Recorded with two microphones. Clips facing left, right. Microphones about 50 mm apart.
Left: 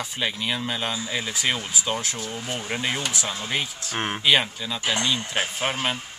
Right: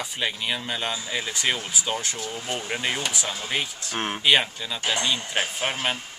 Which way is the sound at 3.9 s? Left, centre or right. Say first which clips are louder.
Left 1 dB; centre.